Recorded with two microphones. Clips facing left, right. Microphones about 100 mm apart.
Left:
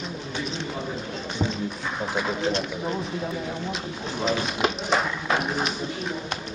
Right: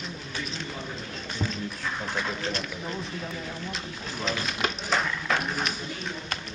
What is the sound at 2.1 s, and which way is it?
Speech, 10° left (ahead or behind).